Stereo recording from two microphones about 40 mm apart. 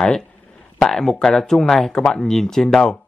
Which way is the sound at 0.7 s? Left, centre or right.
Centre.